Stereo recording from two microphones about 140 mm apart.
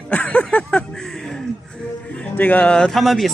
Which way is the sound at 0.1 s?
10° left (ahead or behind).